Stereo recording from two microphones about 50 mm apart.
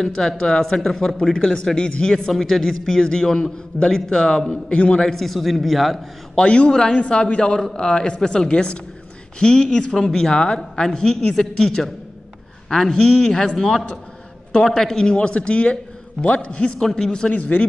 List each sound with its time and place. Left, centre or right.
0.0 s a man's voice: centre
5.0 s a man's voice: centre
6.3 s a man's voice: left
16.8 s a man's voice: centre
17.4 s a man's voice: left